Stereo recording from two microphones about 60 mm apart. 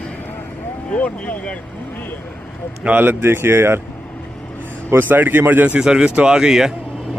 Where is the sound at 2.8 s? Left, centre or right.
Right.